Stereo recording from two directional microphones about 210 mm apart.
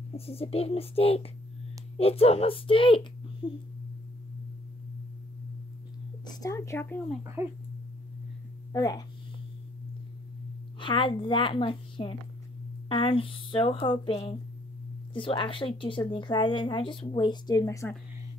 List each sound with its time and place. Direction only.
0.1 s speech: 30° left (ahead or behind)
6.2 s speech: 15° left (ahead or behind)
7.4 s speech: 15° right (ahead or behind)
8.7 s speech: 20° left (ahead or behind)
10.8 s speech: 25° left (ahead or behind)